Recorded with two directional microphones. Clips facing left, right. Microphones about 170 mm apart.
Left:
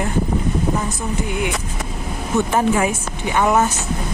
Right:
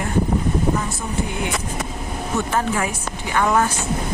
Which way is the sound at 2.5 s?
15° left (ahead or behind).